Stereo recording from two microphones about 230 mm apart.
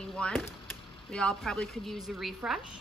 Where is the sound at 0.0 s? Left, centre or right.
Centre.